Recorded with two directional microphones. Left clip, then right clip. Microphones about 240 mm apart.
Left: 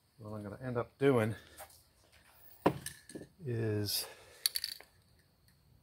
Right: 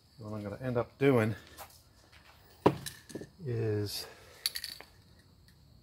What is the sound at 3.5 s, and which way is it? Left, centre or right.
Cutlery, left.